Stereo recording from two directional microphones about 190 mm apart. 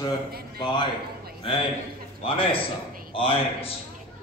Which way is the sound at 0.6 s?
25° left (ahead or behind).